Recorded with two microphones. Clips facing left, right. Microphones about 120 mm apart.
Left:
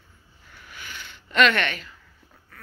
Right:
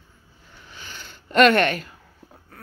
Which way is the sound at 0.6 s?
30° right (ahead or behind).